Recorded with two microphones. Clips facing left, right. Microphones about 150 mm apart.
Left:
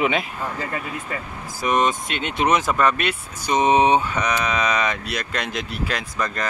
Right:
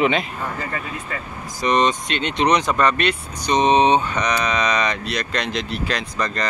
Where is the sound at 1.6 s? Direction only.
5° left (ahead or behind).